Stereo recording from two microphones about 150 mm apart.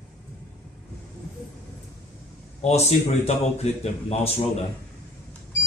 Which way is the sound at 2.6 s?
45° left (ahead or behind).